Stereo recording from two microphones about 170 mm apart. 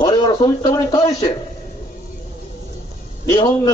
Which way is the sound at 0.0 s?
25° left (ahead or behind).